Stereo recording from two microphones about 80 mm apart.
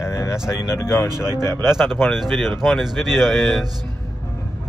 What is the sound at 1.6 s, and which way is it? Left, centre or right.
Speech, centre.